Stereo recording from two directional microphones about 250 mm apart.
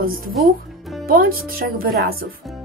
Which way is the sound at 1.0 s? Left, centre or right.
Right.